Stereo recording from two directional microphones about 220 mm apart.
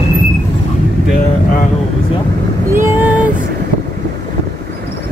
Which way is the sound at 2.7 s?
10° right (ahead or behind).